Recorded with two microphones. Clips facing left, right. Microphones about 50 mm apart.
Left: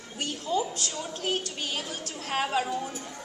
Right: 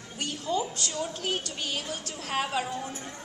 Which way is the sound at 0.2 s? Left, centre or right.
Centre.